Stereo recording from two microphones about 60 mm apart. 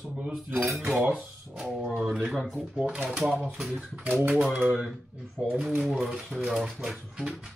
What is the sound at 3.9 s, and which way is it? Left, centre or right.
Speech, right.